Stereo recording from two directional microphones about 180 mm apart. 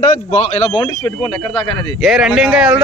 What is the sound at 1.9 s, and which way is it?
Speech, centre (ahead or behind).